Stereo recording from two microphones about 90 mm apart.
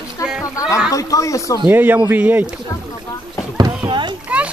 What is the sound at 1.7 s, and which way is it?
Speech, 20° right (ahead or behind).